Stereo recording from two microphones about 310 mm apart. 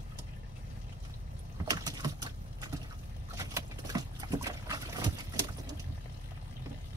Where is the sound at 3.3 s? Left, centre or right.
Centre.